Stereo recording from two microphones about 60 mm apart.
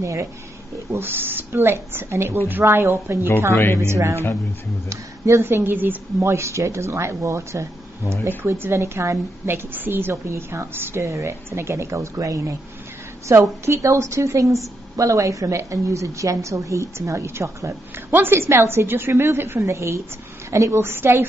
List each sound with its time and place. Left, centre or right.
0.0 s a woman's voice: right
0.9 s a woman's voice: right
3.5 s speech: left
3.8 s a woman's voice: right
6.2 s a woman's voice: right
8.3 s a woman's voice: right
9.7 s a woman's voice: right
10.2 s a woman's voice: right
18.1 s a woman's voice: right
20.8 s a woman's voice: right